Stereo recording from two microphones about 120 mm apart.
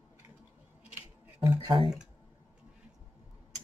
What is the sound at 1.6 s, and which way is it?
Speech, 45° right (ahead or behind).